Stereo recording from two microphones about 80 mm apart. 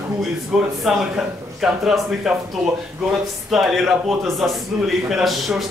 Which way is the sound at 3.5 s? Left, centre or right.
Centre.